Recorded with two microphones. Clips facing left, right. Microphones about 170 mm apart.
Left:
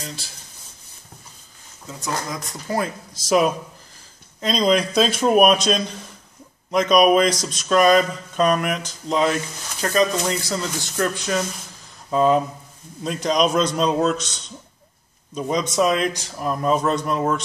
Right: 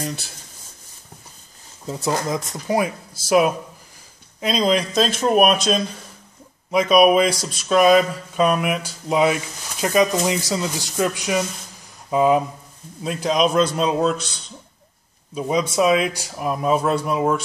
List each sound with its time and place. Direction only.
1.9 s speech: 30° right (ahead or behind)
2.7 s speech: 10° right (ahead or behind)